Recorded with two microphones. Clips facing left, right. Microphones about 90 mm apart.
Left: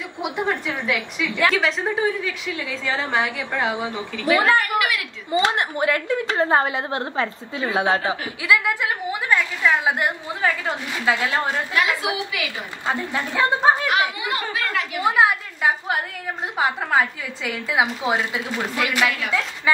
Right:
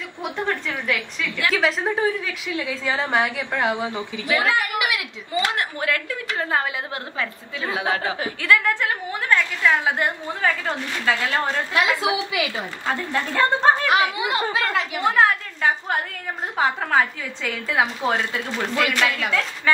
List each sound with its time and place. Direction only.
0.2 s a woman's voice: 10° left (ahead or behind)
4.6 s a woman's voice: 15° right (ahead or behind)
5.3 s a woman's voice: 25° left (ahead or behind)
8.4 s a woman's voice: 10° left (ahead or behind)
11.8 s a woman's voice: 20° right (ahead or behind)
12.8 s a woman's voice: 15° left (ahead or behind)
14.1 s a woman's voice: 20° right (ahead or behind)
15.0 s a woman's voice: 10° left (ahead or behind)